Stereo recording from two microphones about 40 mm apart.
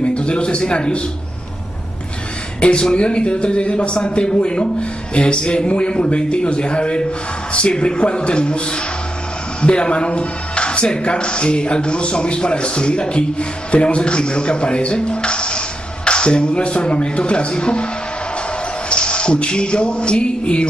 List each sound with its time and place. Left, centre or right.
0.0 s speech: left
2.6 s speech: left
18.9 s a sound: left